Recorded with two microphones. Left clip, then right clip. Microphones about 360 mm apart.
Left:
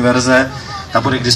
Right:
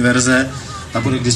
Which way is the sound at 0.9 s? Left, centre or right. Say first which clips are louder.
Left 6 dB; left.